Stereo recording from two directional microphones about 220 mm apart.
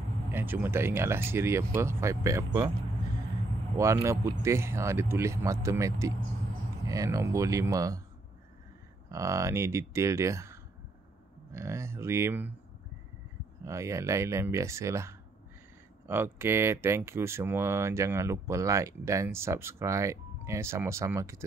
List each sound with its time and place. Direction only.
0.3 s speech: 10° right (ahead or behind)
3.7 s speech: 15° right (ahead or behind)
9.1 s speech: 15° right (ahead or behind)
13.7 s speech: 15° right (ahead or behind)